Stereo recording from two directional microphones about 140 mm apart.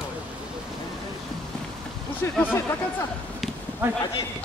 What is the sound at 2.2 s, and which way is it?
Speech, 15° left (ahead or behind).